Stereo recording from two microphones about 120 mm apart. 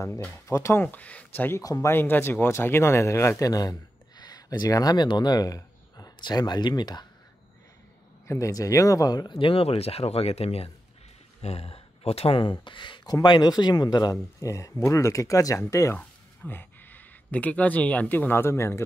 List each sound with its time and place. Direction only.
0.0 s speech: 20° left (ahead or behind)
0.8 s speech: 10° left (ahead or behind)
1.6 s speech: 30° left (ahead or behind)
8.3 s speech: 25° left (ahead or behind)